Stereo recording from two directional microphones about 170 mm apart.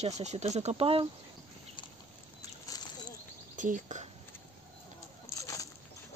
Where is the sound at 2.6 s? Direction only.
25° left (ahead or behind).